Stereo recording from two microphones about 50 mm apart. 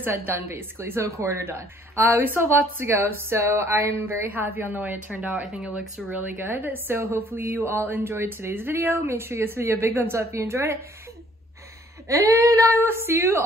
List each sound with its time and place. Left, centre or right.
0.0 s a woman's voice: right
1.0 s speech: right
1.5 s a woman's voice: right
4.3 s a woman's voice: right
5.5 s speech: centre
6.0 s a woman's voice: right
12.1 s a sound: right
12.7 s a woman's voice: right